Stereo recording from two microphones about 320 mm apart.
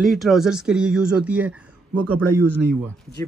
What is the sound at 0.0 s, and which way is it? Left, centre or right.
A man's voice, centre.